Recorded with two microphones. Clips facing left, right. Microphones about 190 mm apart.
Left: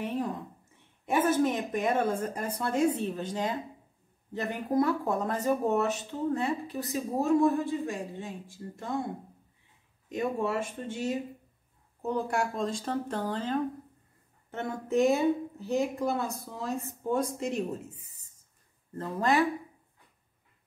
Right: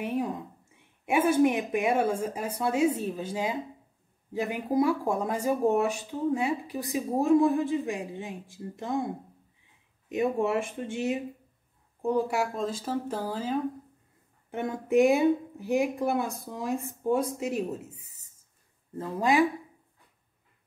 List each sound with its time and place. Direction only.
0.0 s a sound: 10° right (ahead or behind)
1.0 s speech: 10° right (ahead or behind)
10.0 s speech: 15° right (ahead or behind)